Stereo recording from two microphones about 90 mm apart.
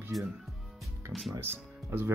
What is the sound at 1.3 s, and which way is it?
Speech, 25° right (ahead or behind).